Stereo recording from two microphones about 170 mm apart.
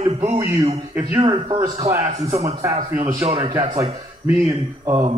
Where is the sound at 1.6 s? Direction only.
15° right (ahead or behind).